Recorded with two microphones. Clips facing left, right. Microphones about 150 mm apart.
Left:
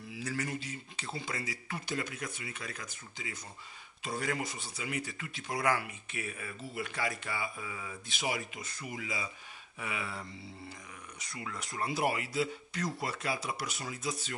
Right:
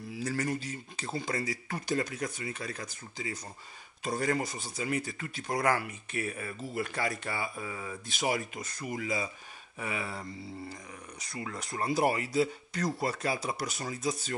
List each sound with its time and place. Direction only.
0.1 s speech: 40° right (ahead or behind)